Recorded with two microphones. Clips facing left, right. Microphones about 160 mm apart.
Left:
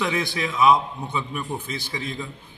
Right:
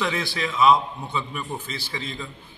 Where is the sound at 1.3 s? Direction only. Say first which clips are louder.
Left 2 dB; 5° left (ahead or behind).